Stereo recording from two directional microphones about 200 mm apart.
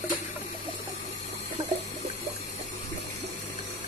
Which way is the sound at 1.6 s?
20° right (ahead or behind).